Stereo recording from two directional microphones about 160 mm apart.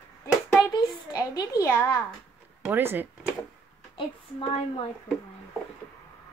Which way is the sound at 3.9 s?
35° left (ahead or behind).